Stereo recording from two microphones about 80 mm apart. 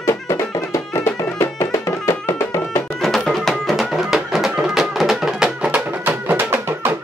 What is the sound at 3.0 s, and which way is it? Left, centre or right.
Music, centre.